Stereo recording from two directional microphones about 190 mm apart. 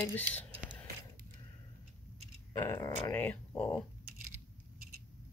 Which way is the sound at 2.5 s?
15° left (ahead or behind).